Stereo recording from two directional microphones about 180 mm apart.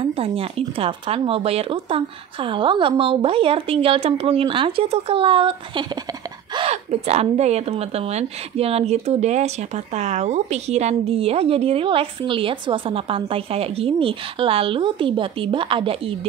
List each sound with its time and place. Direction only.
0.0 s a woman's voice: 30° right (ahead or behind)